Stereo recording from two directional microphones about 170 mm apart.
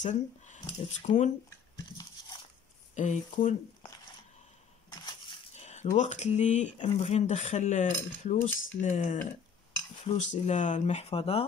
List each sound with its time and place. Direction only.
0.0 s speech: 45° left (ahead or behind)
2.9 s speech: 45° left (ahead or behind)
5.6 s coin: 40° left (ahead or behind)
5.9 s speech: 40° left (ahead or behind)